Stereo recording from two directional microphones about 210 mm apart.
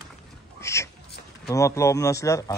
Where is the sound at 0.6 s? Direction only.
15° left (ahead or behind).